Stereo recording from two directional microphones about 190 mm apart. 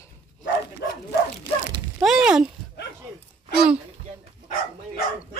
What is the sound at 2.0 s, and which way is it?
Speech, 5° right (ahead or behind).